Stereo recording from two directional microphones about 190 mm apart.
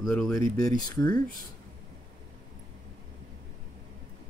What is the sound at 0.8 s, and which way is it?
Speech, 20° left (ahead or behind).